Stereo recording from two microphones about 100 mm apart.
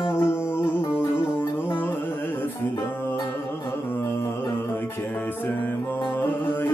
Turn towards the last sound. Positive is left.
turn(degrees=20)  # may be behind; listen again after turning